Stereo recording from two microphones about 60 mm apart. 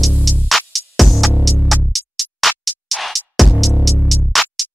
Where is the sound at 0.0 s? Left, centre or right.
Centre.